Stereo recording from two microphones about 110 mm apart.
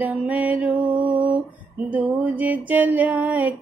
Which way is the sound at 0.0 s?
15° right (ahead or behind).